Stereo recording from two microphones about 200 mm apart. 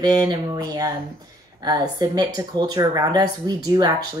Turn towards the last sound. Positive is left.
turn(degrees=-20)  # may be behind; listen again after turning